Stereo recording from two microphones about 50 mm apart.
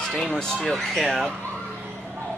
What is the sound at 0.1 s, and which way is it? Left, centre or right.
Speech, centre.